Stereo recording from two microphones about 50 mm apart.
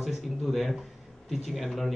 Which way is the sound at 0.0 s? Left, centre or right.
Centre.